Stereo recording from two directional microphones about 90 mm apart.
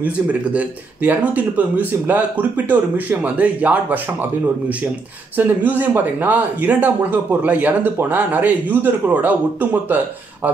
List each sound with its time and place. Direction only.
0.0 s speech: 15° right (ahead or behind)